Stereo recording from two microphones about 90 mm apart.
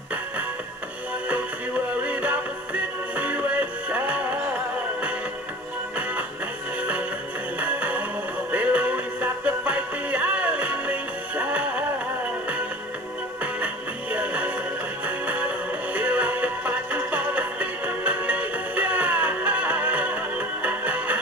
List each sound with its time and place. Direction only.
2.0 s music: 15° right (ahead or behind)
7.5 s music: 15° right (ahead or behind)
14.1 s music: 15° right (ahead or behind)